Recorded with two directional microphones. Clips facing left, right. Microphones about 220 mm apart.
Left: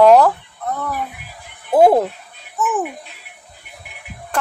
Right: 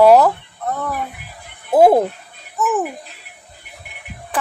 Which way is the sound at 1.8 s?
15° right (ahead or behind).